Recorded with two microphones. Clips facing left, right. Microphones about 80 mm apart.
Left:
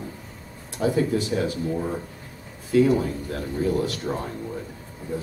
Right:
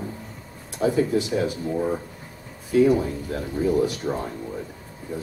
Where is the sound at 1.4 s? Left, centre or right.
Centre.